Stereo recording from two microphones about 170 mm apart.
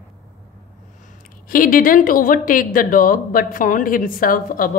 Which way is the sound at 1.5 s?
55° left (ahead or behind).